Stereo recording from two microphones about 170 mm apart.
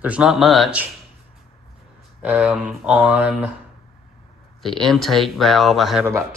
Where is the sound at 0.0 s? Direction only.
5° right (ahead or behind).